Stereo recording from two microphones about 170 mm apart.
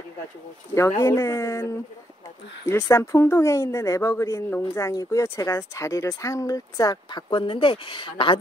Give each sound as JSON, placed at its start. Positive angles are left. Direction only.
{"t": 1.0, "sound": "a woman's voice", "side_deg": 15}
{"t": 2.7, "sound": "a woman's voice", "side_deg": 15}